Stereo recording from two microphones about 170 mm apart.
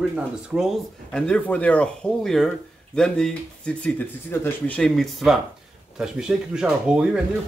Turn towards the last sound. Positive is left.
turn(degrees=-5)  # may be behind; listen again after turning